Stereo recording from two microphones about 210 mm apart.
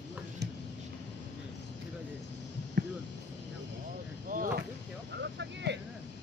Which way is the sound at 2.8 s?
55° right (ahead or behind).